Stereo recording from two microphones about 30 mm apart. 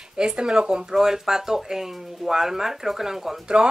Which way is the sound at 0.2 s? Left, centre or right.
Right.